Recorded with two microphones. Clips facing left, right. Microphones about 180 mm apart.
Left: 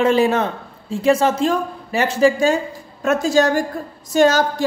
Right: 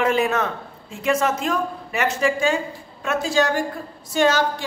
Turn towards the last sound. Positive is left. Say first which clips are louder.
# left 4 dB
turn(degrees=45)  # may be behind; listen again after turning